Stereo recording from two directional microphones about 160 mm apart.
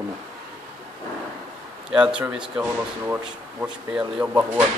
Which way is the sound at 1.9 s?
5° right (ahead or behind).